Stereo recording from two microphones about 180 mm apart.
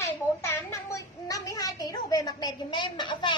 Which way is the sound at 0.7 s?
20° left (ahead or behind).